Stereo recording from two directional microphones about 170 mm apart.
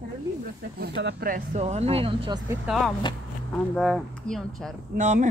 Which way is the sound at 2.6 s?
Centre (ahead or behind).